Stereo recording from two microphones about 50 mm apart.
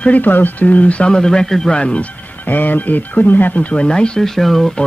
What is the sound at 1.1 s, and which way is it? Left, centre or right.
Speech, centre.